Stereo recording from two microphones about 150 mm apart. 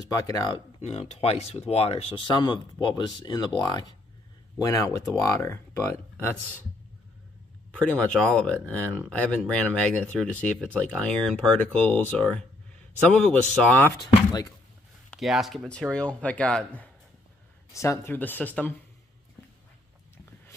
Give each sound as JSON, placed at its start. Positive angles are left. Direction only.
{"t": 0.0, "sound": "speech", "side_deg": 25}
{"t": 0.8, "sound": "speech", "side_deg": 45}
{"t": 7.7, "sound": "speech", "side_deg": 5}
{"t": 15.1, "sound": "speech", "side_deg": 0}